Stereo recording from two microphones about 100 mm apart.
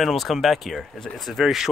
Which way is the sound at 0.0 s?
Centre (ahead or behind).